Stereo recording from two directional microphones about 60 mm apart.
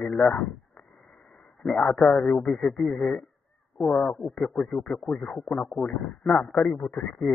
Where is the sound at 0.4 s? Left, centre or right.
Centre.